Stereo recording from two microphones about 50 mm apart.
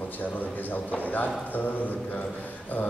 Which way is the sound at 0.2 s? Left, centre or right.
Left.